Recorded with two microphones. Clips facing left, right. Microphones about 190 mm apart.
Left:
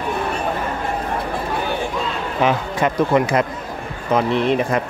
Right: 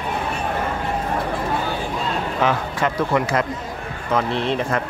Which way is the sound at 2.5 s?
15° left (ahead or behind).